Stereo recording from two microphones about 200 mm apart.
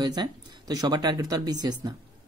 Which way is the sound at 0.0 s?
20° right (ahead or behind).